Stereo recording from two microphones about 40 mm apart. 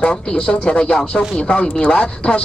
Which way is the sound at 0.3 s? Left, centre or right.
Left.